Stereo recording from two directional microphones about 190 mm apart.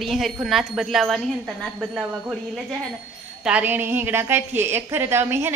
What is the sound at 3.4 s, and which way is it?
A woman's voice, 10° right (ahead or behind).